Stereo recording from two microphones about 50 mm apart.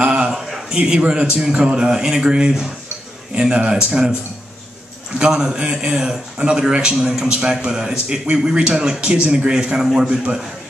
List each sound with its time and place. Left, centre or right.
0.0 s a sound: right
0.8 s speech: centre
5.2 s speech: centre